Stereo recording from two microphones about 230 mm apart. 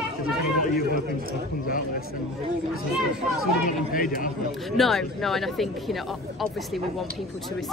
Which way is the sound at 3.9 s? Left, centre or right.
Left.